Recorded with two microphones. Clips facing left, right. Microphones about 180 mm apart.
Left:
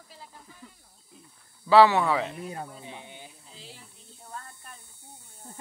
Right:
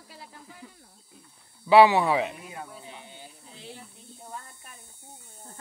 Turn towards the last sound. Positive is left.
turn(degrees=-15)  # may be behind; listen again after turning